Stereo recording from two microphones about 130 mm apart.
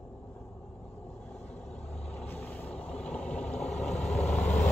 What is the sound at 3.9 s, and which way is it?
Vehicle, 60° left (ahead or behind).